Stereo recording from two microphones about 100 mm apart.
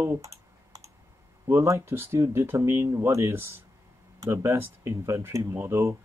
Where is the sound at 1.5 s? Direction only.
30° right (ahead or behind).